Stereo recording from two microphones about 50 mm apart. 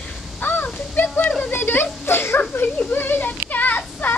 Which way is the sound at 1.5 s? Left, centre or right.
Left.